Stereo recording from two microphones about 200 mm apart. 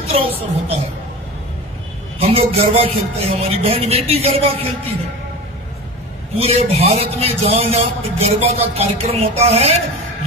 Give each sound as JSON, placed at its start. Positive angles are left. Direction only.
{"t": 2.1, "sound": "a man's voice", "side_deg": -30}
{"t": 6.3, "sound": "a man's voice", "side_deg": -30}